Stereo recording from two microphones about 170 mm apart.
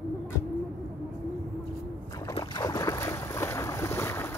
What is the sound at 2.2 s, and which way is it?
Boat, 20° left (ahead or behind).